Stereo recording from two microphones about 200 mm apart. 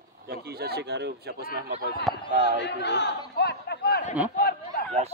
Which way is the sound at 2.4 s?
60° left (ahead or behind).